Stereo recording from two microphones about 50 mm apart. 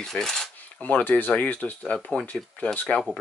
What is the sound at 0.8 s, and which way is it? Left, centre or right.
Speech, left.